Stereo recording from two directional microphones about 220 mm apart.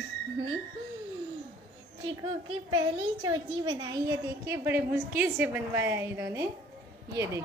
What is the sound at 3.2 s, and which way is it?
A woman's voice, 20° right (ahead or behind).